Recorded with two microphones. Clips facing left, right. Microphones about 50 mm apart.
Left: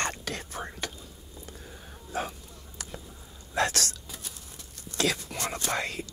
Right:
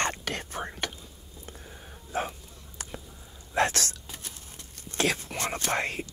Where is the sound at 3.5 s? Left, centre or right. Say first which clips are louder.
Right 2 dB; right.